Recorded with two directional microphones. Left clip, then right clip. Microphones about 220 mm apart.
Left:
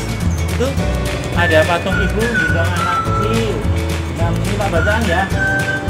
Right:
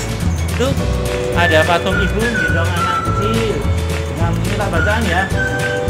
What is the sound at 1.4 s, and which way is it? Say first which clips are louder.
Speech: even; 15° right (ahead or behind).